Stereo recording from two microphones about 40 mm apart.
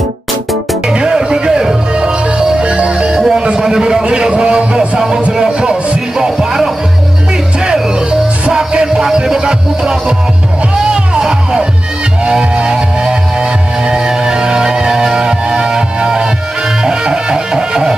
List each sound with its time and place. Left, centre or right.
0.8 s music: centre
2.6 s music: right
3.2 s music: centre
3.4 s a sound: centre
5.3 s music: centre